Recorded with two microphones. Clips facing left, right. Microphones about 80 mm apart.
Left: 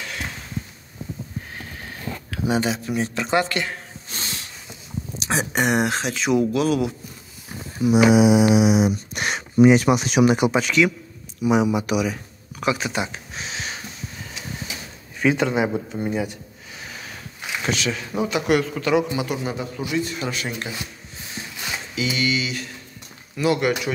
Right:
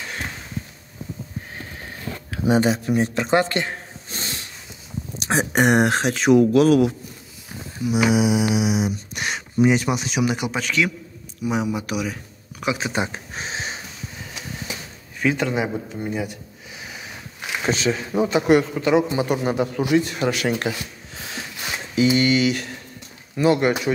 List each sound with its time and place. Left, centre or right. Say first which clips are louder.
2.5 s speech: right 4 dB; right
5.2 s speech: right 3 dB; right
7.8 s mantra: left 4 dB; left
9.6 s speech: left 4 dB; left
10.5 s a man's voice: left 4 dB; centre
12.7 s a sound: right 1 dB; right
15.1 s a sound: left 2 dB; centre
17.6 s a man's voice: right 4 dB; right
19.1 s a man's voice: right 5 dB; right
21.2 s a sound: right 3 dB; right
21.9 s speech: right 7 dB; right
23.3 s a man's voice: right 3 dB; right